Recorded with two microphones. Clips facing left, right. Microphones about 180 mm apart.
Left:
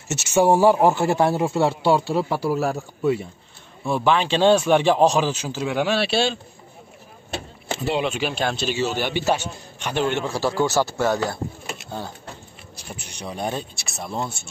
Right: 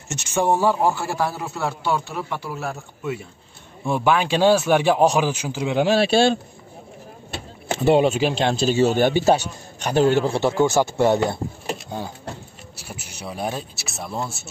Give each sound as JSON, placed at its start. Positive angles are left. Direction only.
{"t": 0.1, "sound": "speech", "side_deg": 5}
{"t": 3.8, "sound": "speech", "side_deg": -15}
{"t": 5.8, "sound": "speech", "side_deg": -40}
{"t": 7.7, "sound": "a man's voice", "side_deg": -50}
{"t": 8.7, "sound": "speech", "side_deg": -50}
{"t": 9.2, "sound": "a man's voice", "side_deg": -35}
{"t": 12.7, "sound": "speech", "side_deg": -5}